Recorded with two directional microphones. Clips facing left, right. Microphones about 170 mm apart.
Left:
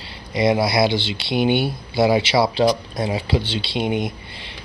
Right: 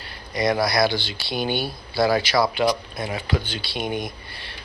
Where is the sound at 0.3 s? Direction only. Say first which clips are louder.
Left 3 dB; 25° left (ahead or behind).